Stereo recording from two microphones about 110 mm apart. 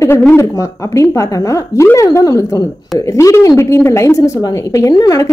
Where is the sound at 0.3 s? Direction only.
25° left (ahead or behind).